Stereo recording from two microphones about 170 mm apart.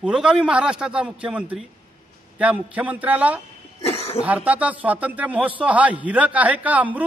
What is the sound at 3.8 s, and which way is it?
Speech, 35° left (ahead or behind).